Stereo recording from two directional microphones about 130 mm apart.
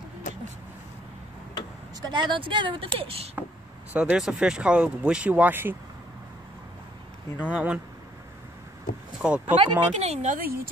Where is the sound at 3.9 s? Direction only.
10° right (ahead or behind).